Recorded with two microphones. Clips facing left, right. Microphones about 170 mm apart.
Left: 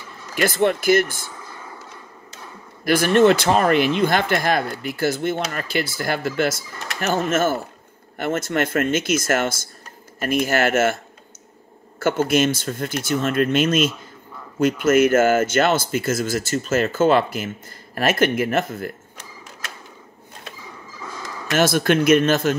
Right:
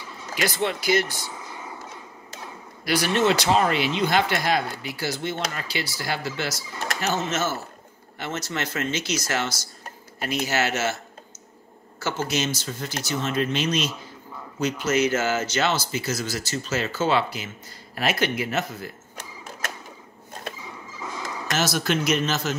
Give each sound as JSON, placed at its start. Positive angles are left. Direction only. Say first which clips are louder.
{"t": 0.3, "sound": "speech", "louder": "left 7 dB", "side_deg": 50}
{"t": 2.8, "sound": "speech", "louder": "left 7 dB", "side_deg": 50}
{"t": 12.0, "sound": "speech", "louder": "left 8 dB", "side_deg": 55}
{"t": 21.5, "sound": "speech", "louder": "left 7 dB", "side_deg": 55}